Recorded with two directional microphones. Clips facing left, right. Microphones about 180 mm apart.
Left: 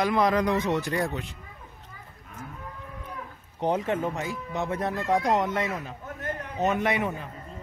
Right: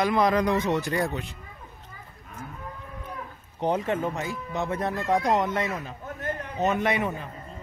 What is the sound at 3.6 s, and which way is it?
Speech, 15° left (ahead or behind).